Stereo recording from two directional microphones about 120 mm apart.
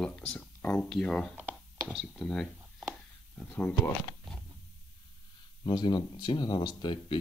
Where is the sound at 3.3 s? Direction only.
10° left (ahead or behind).